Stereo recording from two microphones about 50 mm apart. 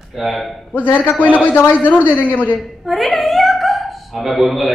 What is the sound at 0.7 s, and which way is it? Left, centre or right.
A man's voice, left.